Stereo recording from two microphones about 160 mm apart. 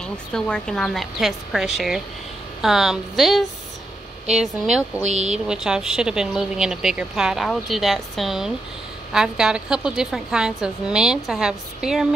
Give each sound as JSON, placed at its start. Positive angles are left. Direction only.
{"t": 0.0, "sound": "a woman's voice", "side_deg": 5}
{"t": 5.0, "sound": "speech", "side_deg": -45}
{"t": 5.5, "sound": "a woman's voice", "side_deg": -5}